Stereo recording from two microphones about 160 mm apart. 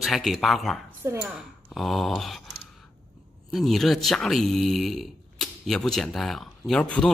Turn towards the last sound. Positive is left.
turn(degrees=5)  # may be behind; listen again after turning